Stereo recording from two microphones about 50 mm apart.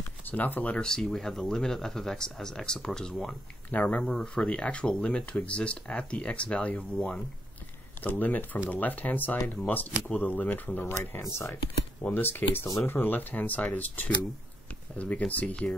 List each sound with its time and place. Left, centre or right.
0.3 s speech: left
0.7 s speech: centre
3.7 s speech: left
4.0 s speech: centre
8.0 s speech: left
11.1 s speech: left
12.1 s speech: left